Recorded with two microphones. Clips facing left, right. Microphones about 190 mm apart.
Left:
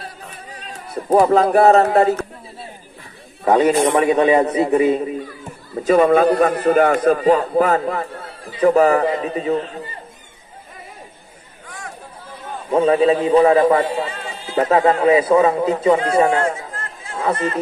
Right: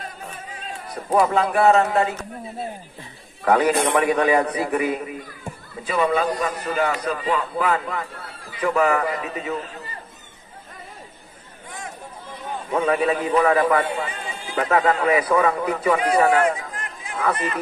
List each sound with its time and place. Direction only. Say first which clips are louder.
0.0 s a sound: even; 40° left (ahead or behind)
1.1 s speech: left 6 dB; 35° left (ahead or behind)
3.4 s a man's voice: left 4 dB; 25° left (ahead or behind)
5.9 s a man's voice: left 8 dB; 50° left (ahead or behind); by 9.9 s 30° left (ahead or behind)
12.7 s a man's voice: left 6 dB; 30° left (ahead or behind)
16.7 s chatter: left 2 dB; 15° right (ahead or behind)